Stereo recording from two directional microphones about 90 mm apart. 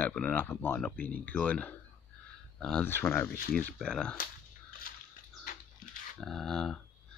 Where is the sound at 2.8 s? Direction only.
25° left (ahead or behind).